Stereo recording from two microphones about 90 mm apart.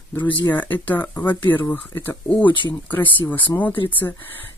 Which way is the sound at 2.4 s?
65° left (ahead or behind).